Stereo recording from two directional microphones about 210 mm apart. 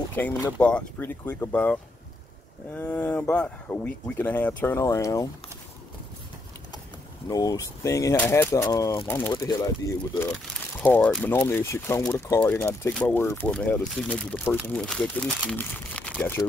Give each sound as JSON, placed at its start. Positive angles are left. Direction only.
{"t": 0.1, "sound": "speech", "side_deg": 10}
{"t": 7.2, "sound": "speech", "side_deg": 15}